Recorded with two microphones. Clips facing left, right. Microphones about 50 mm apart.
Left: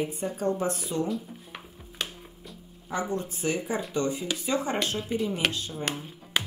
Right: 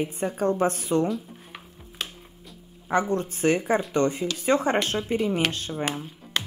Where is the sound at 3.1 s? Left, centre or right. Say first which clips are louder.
Right 6 dB; right.